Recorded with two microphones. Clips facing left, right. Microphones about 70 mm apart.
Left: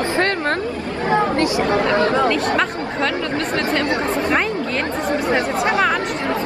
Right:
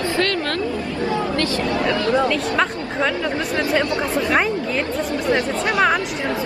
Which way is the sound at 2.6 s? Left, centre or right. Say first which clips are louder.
Even; centre.